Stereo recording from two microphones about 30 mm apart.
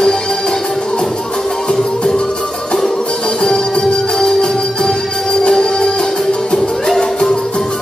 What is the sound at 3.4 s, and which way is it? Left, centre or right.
Music, left.